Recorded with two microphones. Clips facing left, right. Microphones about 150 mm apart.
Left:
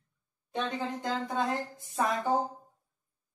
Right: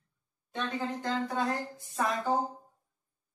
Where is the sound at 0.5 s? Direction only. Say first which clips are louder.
Left 1 dB; 20° left (ahead or behind).